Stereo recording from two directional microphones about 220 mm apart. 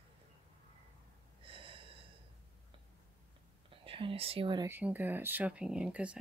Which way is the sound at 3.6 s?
25° right (ahead or behind).